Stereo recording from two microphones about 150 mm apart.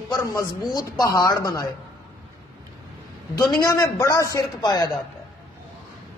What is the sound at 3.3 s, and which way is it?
A man's voice, 25° left (ahead or behind).